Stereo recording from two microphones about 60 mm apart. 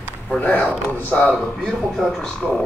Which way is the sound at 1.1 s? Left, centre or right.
Centre.